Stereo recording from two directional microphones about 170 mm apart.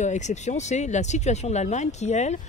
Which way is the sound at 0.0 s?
45° left (ahead or behind).